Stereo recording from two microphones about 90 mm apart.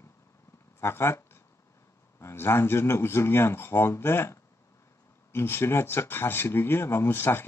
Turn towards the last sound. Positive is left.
turn(degrees=25)  # may be behind; listen again after turning